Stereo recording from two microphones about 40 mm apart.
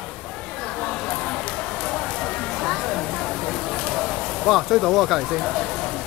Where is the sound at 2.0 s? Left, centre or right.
Centre.